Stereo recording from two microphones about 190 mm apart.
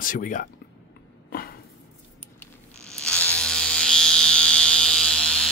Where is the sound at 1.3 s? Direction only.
50° left (ahead or behind).